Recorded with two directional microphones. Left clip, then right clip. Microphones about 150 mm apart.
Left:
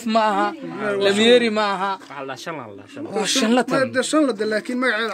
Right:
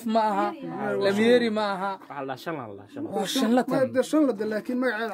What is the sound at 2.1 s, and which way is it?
Speech, 85° right.